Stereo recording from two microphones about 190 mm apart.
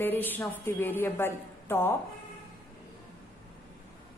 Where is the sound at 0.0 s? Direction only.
10° left (ahead or behind).